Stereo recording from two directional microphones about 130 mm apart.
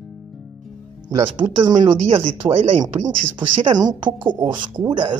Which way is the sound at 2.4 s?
40° right (ahead or behind).